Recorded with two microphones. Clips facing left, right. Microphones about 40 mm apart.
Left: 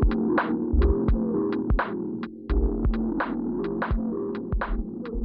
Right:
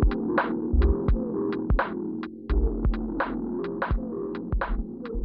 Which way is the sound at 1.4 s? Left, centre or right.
Centre.